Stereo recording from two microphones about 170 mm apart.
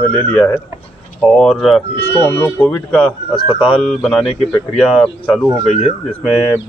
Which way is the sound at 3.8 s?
5° left (ahead or behind).